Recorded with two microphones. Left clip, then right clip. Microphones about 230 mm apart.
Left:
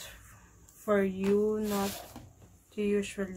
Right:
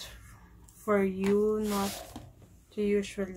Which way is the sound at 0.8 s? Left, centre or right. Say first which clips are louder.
Right 1 dB; centre.